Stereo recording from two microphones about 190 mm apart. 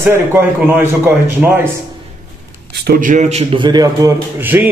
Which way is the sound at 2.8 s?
50° right (ahead or behind).